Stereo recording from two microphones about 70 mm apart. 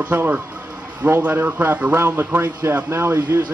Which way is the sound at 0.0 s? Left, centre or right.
Right.